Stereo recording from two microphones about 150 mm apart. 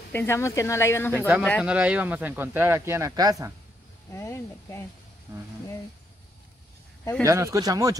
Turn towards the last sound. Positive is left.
turn(degrees=-25)  # may be behind; listen again after turning